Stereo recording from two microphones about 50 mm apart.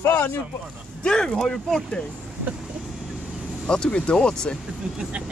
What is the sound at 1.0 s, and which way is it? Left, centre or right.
Speech, centre.